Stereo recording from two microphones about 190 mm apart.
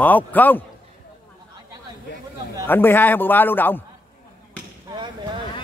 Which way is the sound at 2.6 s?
10° left (ahead or behind).